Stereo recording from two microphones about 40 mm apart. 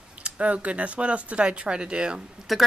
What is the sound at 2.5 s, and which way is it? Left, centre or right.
Speech, centre.